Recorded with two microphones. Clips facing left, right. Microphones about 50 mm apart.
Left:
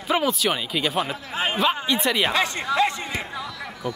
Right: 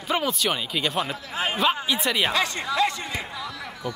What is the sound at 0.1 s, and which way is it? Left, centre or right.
Speech, centre.